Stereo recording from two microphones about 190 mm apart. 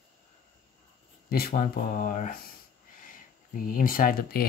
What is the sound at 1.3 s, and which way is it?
Speech, 50° left (ahead or behind).